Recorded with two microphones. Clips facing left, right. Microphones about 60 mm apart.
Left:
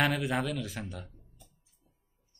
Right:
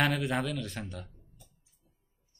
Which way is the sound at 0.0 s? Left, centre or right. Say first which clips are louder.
Even; centre.